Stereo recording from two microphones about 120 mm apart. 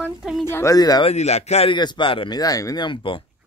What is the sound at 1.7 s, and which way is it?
Speech, 40° left (ahead or behind).